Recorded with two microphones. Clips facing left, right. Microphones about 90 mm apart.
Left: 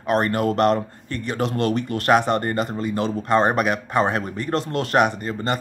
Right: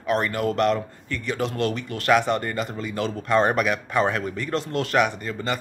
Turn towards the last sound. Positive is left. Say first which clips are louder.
# left 3 dB
turn(degrees=40)  # may be behind; listen again after turning